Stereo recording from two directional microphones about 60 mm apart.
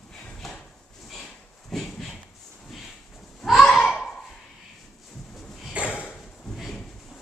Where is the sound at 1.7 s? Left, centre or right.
Centre.